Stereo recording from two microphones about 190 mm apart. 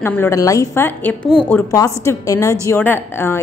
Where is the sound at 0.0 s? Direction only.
10° left (ahead or behind).